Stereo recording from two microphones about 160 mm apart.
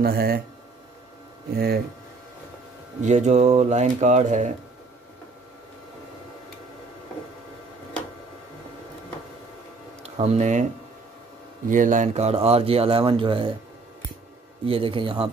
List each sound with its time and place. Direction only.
0.0 s speech: 70° right (ahead or behind)
1.5 s speech: 75° right (ahead or behind)
3.0 s speech: 50° right (ahead or behind)
10.0 s speech: 40° right (ahead or behind)
11.7 s speech: 55° right (ahead or behind); by 13.5 s 30° right (ahead or behind)
14.7 s speech: 35° right (ahead or behind)